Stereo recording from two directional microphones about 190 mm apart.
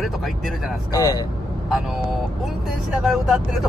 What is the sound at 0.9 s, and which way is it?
Speech, 20° left (ahead or behind).